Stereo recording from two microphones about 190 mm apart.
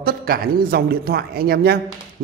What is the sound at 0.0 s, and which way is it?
A man's voice, 50° right (ahead or behind).